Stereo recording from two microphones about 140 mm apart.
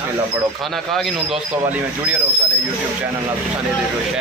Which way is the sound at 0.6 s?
Centre (ahead or behind).